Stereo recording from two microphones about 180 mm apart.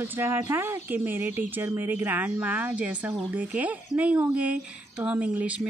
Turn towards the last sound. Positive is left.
turn(degrees=-10)  # may be behind; listen again after turning